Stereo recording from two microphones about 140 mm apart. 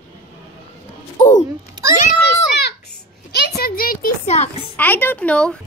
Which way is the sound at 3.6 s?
90° left.